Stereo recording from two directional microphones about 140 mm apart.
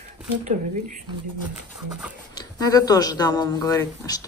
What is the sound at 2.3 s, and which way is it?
Speech, 25° left (ahead or behind).